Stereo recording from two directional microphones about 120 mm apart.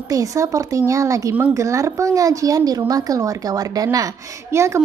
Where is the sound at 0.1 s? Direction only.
25° right (ahead or behind).